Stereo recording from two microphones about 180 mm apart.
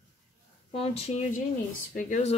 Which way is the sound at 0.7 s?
35° left (ahead or behind).